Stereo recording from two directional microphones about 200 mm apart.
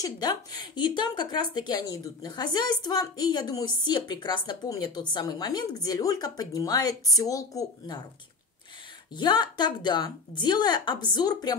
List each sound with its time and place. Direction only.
0.0 s a woman's voice: 20° left (ahead or behind)
9.1 s a woman's voice: 20° left (ahead or behind)